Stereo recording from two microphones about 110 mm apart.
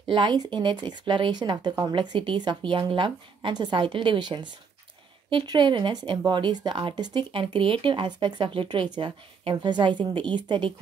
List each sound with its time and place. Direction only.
0.1 s speech: 45° right (ahead or behind)